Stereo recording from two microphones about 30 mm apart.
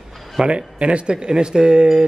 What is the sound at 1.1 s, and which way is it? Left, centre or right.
Speech, right.